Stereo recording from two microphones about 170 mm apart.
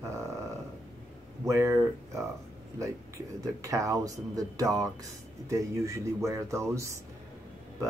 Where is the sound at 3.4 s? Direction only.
20° right (ahead or behind).